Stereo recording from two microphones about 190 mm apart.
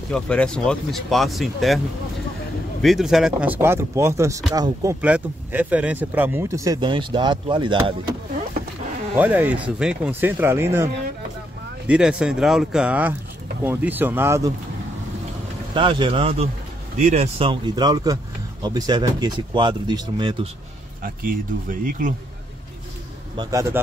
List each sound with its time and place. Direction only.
0.1 s speech: 5° left (ahead or behind)
2.8 s speech: centre (ahead or behind); by 7.9 s 25° right (ahead or behind)
9.1 s speech: 10° right (ahead or behind)
11.9 s speech: 5° right (ahead or behind)
15.7 s speech: 25° right (ahead or behind)
21.0 s speech: 45° right (ahead or behind)
23.3 s speech: 20° right (ahead or behind)